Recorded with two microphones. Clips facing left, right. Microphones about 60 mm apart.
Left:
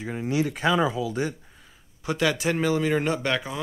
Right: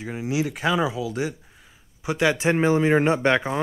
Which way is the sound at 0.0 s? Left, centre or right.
Centre.